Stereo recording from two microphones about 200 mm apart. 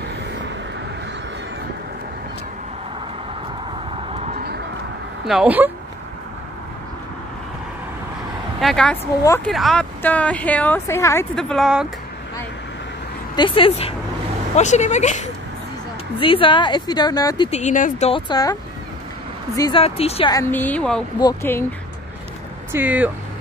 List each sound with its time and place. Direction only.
4.1 s a sound: 35° right (ahead or behind)
5.2 s speech: 5° right (ahead or behind)
8.5 s speech: centre (ahead or behind)
9.2 s speech: 15° left (ahead or behind)
9.5 s speech: centre (ahead or behind)
11.3 s speech: centre (ahead or behind)
13.4 s speech: 25° left (ahead or behind)
16.2 s speech: 25° left (ahead or behind)
17.5 s speech: 35° left (ahead or behind)
18.3 s speech: 20° left (ahead or behind)
19.8 s speech: 30° left (ahead or behind)
20.3 s speech: 10° left (ahead or behind)
21.2 s speech: 15° left (ahead or behind)
22.7 s speech: 10° right (ahead or behind)